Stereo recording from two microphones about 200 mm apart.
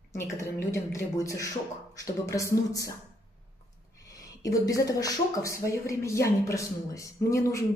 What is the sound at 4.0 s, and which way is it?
Speech, 15° left (ahead or behind).